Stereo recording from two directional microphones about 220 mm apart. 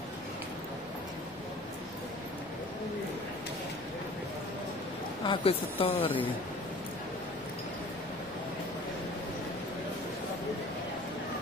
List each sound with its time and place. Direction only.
5.2 s speech: 25° left (ahead or behind)